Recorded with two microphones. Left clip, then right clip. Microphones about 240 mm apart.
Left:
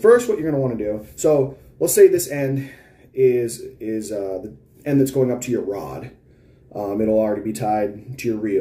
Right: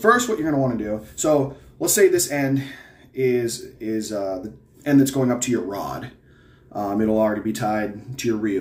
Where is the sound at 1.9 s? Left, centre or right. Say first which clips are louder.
Left 4 dB; right.